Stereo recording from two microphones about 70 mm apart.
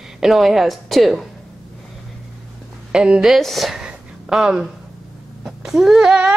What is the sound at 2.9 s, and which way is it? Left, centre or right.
Speech, centre.